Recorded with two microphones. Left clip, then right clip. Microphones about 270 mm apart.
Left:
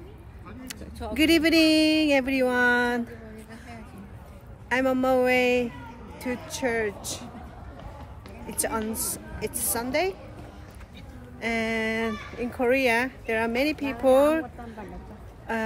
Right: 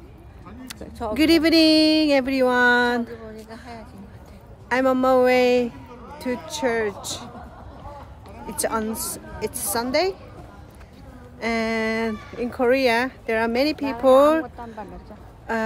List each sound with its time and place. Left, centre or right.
0.7 s speech: right
1.1 s speech: centre
3.5 s a sound: centre
4.6 s speech: centre
8.5 s speech: centre
11.3 s speech: centre